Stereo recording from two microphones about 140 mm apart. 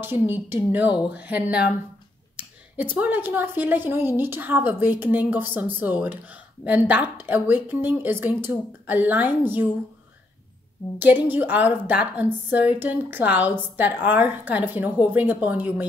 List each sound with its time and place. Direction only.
0.0 s a woman's voice: 15° right (ahead or behind)
11.0 s a woman's voice: 15° right (ahead or behind)